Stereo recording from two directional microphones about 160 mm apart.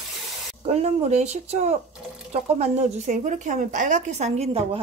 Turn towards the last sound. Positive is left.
turn(degrees=-40)  # may be behind; listen again after turning